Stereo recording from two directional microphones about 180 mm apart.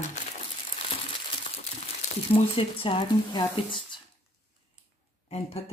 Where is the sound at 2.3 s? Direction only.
30° left (ahead or behind).